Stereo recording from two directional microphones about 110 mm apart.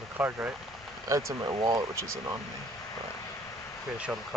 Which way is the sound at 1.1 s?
30° right (ahead or behind).